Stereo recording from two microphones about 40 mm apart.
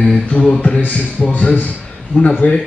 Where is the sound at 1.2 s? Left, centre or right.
Centre.